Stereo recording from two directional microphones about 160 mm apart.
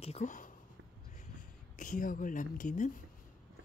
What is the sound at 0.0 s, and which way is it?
Speech, 45° left (ahead or behind).